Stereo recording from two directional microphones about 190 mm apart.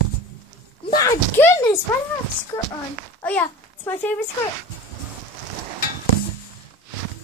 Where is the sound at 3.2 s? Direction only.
10° left (ahead or behind).